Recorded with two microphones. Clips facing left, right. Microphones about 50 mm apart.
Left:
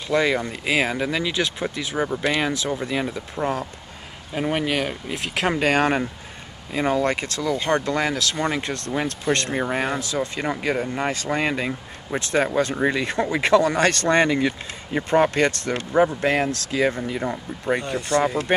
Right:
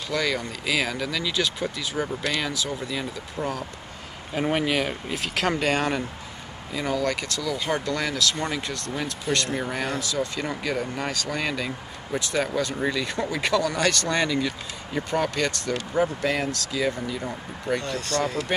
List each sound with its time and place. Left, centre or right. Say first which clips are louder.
0.1 s speech: left 6 dB; left
4.4 s speech: left 1 dB; centre
5.3 s speech: left 2 dB; centre
5.6 s speech: left 4 dB; left